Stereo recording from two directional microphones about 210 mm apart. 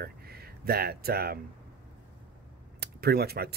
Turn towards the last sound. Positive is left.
turn(degrees=-50)  # may be behind; listen again after turning